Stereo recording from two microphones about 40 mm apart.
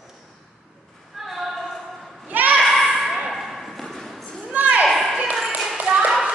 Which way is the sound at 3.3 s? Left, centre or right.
Centre.